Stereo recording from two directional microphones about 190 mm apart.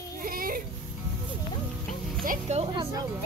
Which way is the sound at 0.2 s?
50° right (ahead or behind).